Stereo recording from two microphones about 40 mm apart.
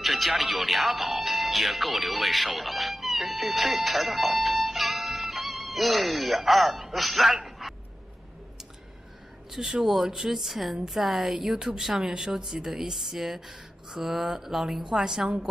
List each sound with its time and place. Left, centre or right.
0.0 s speech: centre
9.5 s speech: centre
11.3 s speech: centre